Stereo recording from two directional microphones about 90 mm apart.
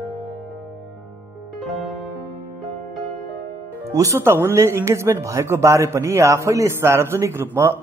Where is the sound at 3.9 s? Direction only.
35° right (ahead or behind).